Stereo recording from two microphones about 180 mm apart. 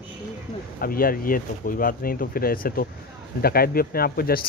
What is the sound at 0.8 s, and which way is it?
Speech, 55° left (ahead or behind).